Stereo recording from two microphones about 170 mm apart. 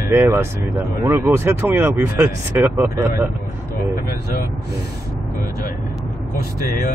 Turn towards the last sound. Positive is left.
turn(degrees=60)  # may be behind; listen again after turning